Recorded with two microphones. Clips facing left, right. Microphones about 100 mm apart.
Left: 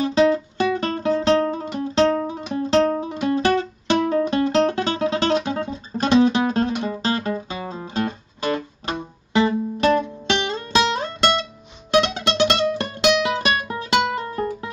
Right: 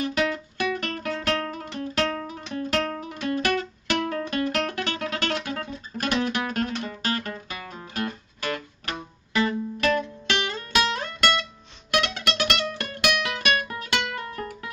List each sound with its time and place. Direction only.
0.0 s music: 25° left (ahead or behind)